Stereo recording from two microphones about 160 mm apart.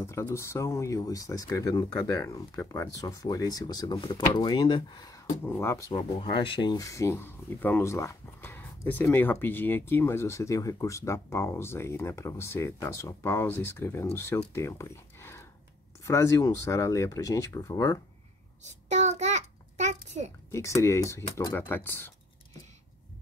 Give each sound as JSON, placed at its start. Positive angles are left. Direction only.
{"t": 0.0, "sound": "speech", "side_deg": 15}
{"t": 18.9, "sound": "a sound", "side_deg": -45}
{"t": 20.5, "sound": "speech", "side_deg": 15}